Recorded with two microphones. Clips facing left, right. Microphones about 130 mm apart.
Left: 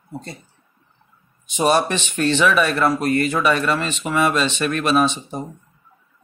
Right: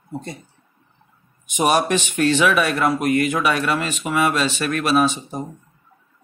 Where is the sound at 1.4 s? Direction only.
15° right (ahead or behind).